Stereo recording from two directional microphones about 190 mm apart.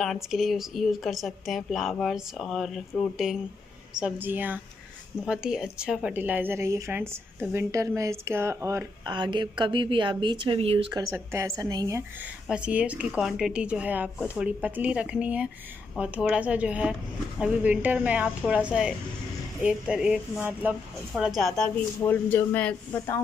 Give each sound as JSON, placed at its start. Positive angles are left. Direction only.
{"t": 0.0, "sound": "a woman's voice", "side_deg": 0}
{"t": 12.4, "sound": "a woman's voice", "side_deg": -5}
{"t": 21.4, "sound": "speech", "side_deg": 0}